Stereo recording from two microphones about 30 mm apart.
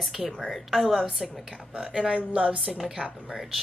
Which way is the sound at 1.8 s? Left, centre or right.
Right.